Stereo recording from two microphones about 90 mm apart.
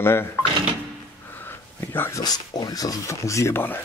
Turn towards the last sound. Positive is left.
turn(degrees=25)  # may be behind; listen again after turning